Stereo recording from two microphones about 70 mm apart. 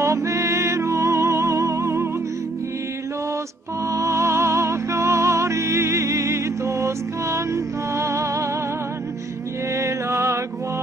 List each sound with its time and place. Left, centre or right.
0.0 s music: right
3.9 s music: right
9.8 s music: right